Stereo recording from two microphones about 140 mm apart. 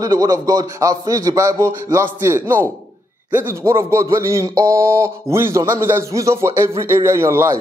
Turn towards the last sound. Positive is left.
turn(degrees=-20)  # may be behind; listen again after turning